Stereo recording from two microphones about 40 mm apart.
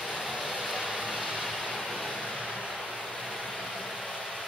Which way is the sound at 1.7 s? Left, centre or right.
Centre.